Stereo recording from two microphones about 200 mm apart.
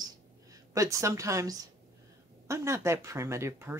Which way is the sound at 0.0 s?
15° right (ahead or behind).